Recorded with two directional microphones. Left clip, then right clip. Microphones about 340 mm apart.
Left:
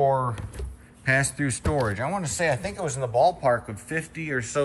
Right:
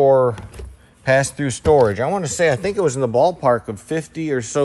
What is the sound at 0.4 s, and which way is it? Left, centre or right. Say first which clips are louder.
Speech: right 3 dB; centre.